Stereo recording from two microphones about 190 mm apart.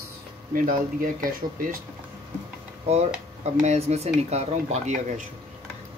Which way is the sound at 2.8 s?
35° right (ahead or behind).